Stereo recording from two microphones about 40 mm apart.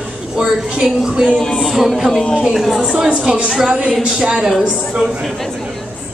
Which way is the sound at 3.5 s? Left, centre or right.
Right.